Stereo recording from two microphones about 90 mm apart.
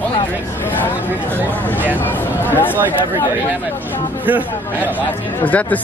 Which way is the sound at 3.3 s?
20° right (ahead or behind).